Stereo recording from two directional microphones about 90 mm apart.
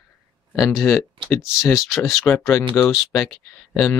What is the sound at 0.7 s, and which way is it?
Speech, 5° right (ahead or behind).